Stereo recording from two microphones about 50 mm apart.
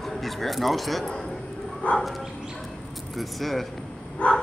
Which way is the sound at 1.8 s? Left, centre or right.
Left.